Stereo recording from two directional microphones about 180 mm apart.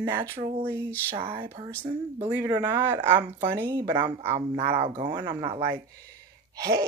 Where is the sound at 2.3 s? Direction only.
15° right (ahead or behind).